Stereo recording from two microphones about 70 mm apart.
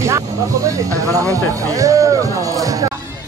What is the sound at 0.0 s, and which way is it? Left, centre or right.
Speech, right.